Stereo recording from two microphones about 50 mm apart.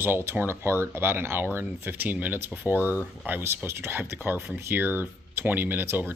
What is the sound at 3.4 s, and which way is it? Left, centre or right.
Speech, right.